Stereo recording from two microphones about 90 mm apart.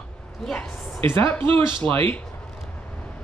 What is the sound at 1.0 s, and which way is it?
Speech, 90° right.